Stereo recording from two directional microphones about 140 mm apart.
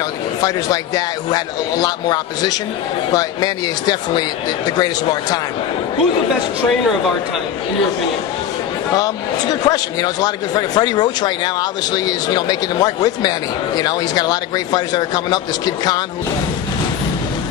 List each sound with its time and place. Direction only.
0.4 s speech: 25° left (ahead or behind)
8.9 s speech: 25° left (ahead or behind)